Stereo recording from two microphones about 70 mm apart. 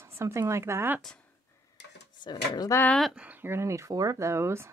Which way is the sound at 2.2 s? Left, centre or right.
Left.